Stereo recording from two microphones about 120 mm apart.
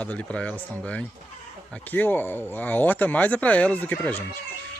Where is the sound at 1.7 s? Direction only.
15° left (ahead or behind).